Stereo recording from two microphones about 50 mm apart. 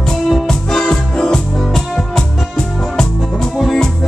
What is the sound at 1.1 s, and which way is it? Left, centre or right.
Music, centre.